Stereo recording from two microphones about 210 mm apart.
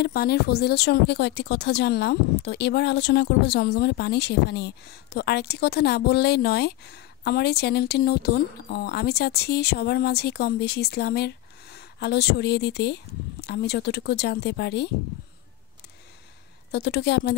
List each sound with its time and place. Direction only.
0.0 s speech: 50° left (ahead or behind)
16.7 s speech: 55° left (ahead or behind)